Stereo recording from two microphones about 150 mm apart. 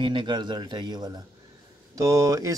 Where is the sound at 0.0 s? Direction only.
30° right (ahead or behind).